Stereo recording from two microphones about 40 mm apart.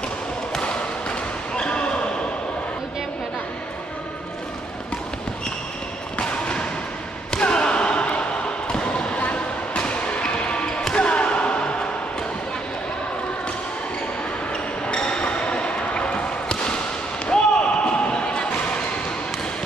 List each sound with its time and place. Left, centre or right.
1.5 s basketball bounce: left
6.1 s a sound: left
7.3 s slam: left
8.7 s a sound: left
10.8 s basketball bounce: left
14.9 s basketball bounce: left
17.3 s slam: left